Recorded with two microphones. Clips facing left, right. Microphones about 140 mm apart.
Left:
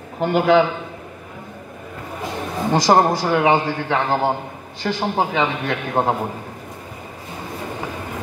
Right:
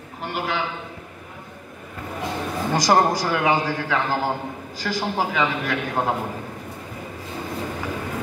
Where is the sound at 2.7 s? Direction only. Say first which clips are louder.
Left 3 dB; 25° left (ahead or behind).